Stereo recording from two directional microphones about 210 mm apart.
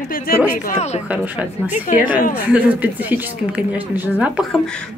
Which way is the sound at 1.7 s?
40° left (ahead or behind).